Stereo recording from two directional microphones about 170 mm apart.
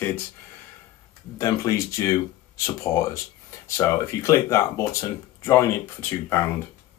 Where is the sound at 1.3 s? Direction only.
20° left (ahead or behind).